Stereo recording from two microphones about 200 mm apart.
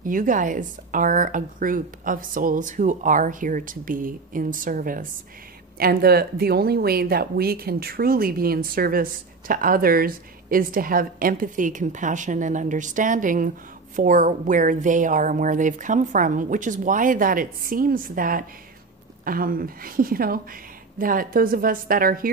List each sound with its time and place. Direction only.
0.0 s speech: 40° right (ahead or behind)